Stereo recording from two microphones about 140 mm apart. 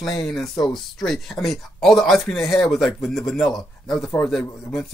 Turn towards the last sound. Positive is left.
turn(degrees=5)  # may be behind; listen again after turning